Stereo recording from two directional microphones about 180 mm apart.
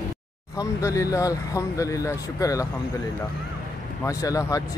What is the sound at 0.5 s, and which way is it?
Speech, 20° left (ahead or behind).